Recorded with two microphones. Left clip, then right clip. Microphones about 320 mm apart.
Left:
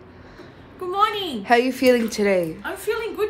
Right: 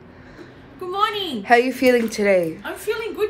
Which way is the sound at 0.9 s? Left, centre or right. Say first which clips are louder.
Left 1 dB; centre.